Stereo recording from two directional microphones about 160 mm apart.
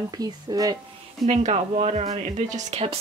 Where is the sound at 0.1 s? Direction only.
25° right (ahead or behind).